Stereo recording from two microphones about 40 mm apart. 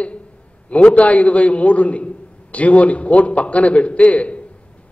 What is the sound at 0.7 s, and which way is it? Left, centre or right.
A man's voice, left.